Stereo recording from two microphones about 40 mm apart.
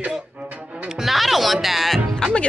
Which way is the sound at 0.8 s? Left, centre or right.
Centre.